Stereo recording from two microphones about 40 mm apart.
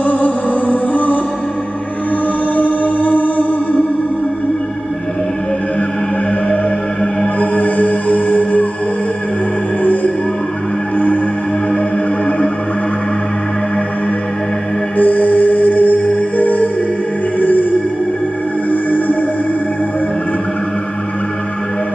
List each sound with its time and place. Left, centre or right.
0.0 s music: left
2.5 s music: left
7.3 s music: left
15.0 s music: left
18.7 s music: left